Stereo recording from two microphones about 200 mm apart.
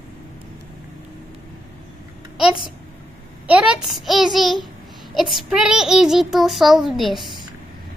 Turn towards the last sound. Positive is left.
turn(degrees=0)  # may be behind; listen again after turning